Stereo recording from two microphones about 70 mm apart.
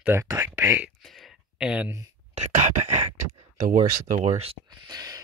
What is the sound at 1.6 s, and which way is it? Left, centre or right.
Speech, centre.